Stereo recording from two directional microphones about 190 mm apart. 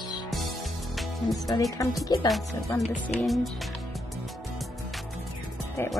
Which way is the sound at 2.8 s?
35° left (ahead or behind).